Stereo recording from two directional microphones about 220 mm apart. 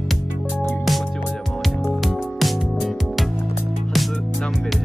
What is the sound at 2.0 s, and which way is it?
Music, centre (ahead or behind).